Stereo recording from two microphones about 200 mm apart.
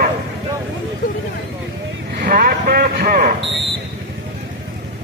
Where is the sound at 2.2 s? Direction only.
45° right (ahead or behind).